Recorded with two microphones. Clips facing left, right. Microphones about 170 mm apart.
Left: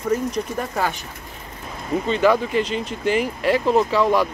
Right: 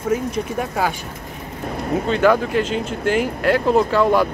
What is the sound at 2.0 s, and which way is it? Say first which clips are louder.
Speech: right 1 dB; centre (ahead or behind).